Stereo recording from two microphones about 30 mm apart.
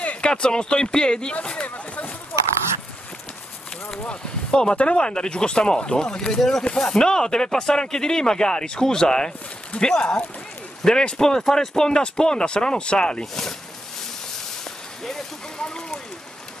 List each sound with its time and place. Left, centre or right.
0.2 s speech: left
1.4 s a sound: left
2.3 s duck: left
4.1 s speech: left
11.9 s speech: left
13.2 s speech: centre
15.6 s speech: left